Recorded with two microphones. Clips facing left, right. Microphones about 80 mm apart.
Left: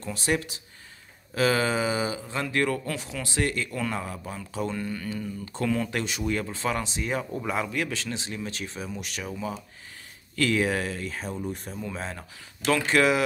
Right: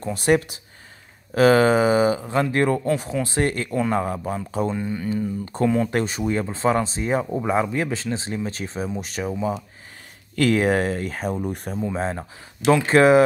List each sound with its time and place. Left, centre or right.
0.0 s speech: right
2.4 s speech: right
4.7 s speech: centre
5.1 s speech: right
10.3 s speech: right
11.7 s speech: right